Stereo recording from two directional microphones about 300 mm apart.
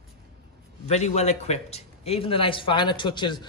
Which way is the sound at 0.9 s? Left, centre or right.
Left.